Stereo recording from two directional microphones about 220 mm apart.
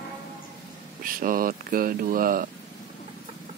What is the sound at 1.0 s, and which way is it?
Speech, 40° right (ahead or behind).